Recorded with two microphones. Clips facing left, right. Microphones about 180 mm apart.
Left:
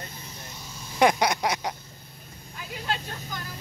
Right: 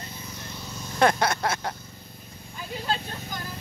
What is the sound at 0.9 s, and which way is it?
Speech, 15° left (ahead or behind).